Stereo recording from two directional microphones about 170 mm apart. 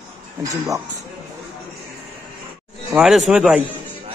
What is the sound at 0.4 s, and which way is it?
Speech, 20° right (ahead or behind).